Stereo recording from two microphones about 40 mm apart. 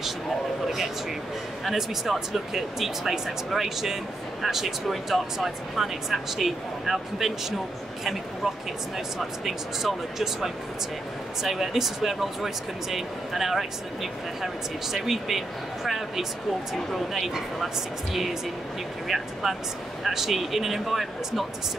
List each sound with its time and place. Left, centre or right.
1.6 s speech: centre
19.0 s speech: centre